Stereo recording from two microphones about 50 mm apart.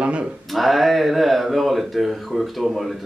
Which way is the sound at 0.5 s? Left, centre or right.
Centre.